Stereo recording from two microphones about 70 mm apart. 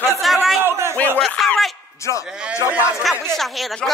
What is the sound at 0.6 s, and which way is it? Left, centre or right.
Speech, right.